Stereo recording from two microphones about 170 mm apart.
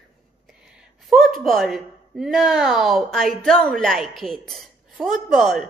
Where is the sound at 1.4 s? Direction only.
Centre (ahead or behind).